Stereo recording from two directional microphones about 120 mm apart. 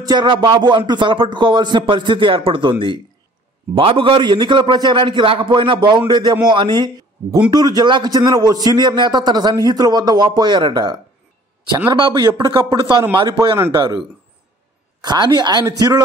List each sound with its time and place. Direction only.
0.0 s a man's voice: 35° right (ahead or behind)